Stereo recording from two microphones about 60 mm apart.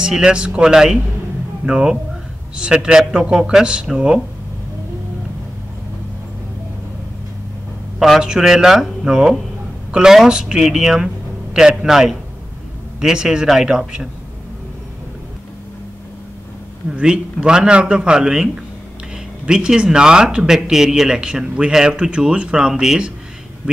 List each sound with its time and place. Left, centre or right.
0.0 s speech: centre
8.2 s speech: centre
17.0 s speech: centre